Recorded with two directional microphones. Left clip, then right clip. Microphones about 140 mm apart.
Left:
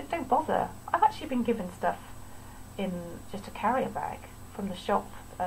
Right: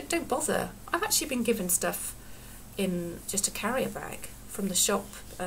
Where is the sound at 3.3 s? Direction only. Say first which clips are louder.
Left 2 dB; 20° right (ahead or behind).